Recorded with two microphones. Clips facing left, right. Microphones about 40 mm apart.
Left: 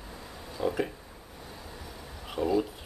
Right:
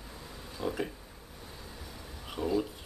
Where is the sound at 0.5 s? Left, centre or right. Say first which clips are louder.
Left 5 dB; centre.